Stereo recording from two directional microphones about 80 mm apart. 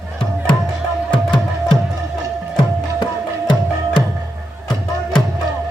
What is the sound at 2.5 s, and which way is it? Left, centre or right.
Music, left.